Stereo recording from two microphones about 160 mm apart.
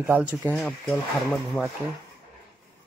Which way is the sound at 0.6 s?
Centre (ahead or behind).